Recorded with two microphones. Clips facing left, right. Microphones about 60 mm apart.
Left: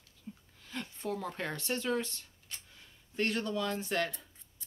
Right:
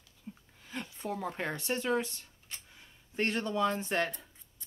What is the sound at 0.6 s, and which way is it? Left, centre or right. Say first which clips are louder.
Speech: right 1 dB; centre.